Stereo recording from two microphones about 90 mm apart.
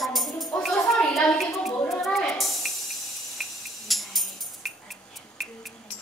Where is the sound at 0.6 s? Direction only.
5° left (ahead or behind).